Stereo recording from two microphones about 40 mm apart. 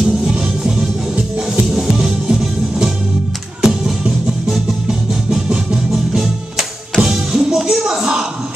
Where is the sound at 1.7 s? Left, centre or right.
Centre.